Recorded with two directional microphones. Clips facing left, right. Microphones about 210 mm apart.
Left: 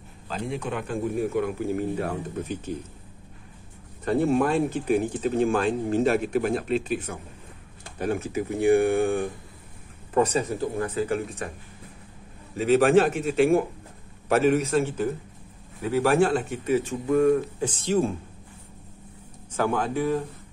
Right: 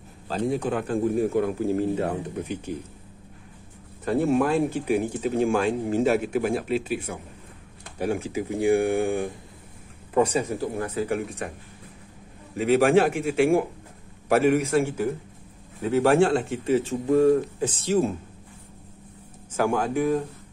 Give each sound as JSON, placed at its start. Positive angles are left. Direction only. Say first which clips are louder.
{"t": 0.3, "sound": "a man's voice", "louder": "right 5 dB", "side_deg": -35}
{"t": 4.0, "sound": "speech", "louder": "even", "side_deg": -5}
{"t": 12.5, "sound": "speech", "louder": "even", "side_deg": -10}
{"t": 15.9, "sound": "speech", "louder": "right 2 dB", "side_deg": -25}
{"t": 19.5, "sound": "speech", "louder": "right 2 dB", "side_deg": -10}